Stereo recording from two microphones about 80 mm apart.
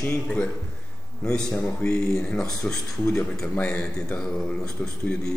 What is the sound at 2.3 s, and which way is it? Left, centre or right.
Speech, centre.